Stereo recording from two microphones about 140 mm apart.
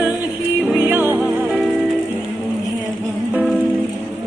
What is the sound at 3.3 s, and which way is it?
Music, 5° right (ahead or behind).